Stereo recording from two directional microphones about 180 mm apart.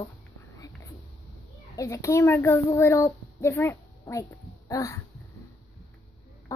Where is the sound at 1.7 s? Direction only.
15° left (ahead or behind).